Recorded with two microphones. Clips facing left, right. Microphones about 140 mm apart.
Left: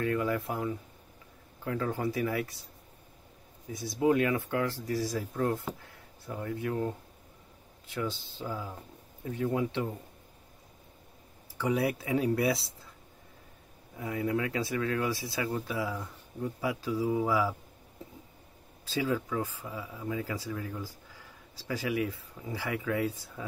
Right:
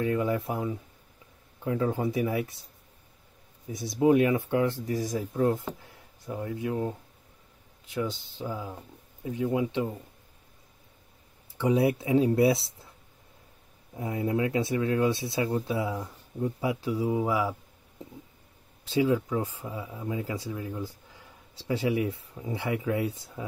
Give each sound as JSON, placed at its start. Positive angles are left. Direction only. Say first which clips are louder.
{"t": 0.0, "sound": "speech", "louder": "right 3 dB", "side_deg": -20}
{"t": 3.7, "sound": "speech", "louder": "right 4 dB", "side_deg": -20}
{"t": 11.5, "sound": "speech", "louder": "right 5 dB", "side_deg": -20}
{"t": 13.9, "sound": "speech", "louder": "right 3 dB", "side_deg": -25}
{"t": 18.9, "sound": "speech", "louder": "right 6 dB", "side_deg": -15}